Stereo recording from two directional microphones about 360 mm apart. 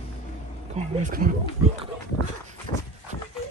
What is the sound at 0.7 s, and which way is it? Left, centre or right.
Speech, centre.